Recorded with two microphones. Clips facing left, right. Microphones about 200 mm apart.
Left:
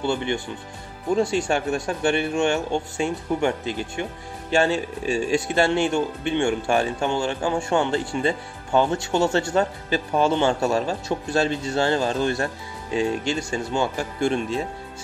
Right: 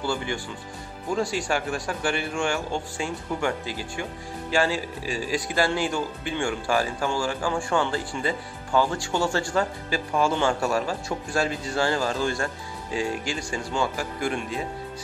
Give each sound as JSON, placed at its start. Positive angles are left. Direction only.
{"t": 0.0, "sound": "speech", "side_deg": 25}